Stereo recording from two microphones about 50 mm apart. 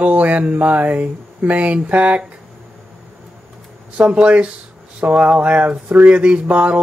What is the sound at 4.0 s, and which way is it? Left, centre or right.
Speech, right.